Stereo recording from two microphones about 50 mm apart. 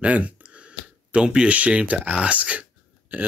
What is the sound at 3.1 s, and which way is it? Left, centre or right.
Speech, right.